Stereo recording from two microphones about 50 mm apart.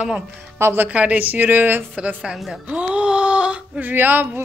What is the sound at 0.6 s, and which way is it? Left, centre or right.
Speech, right.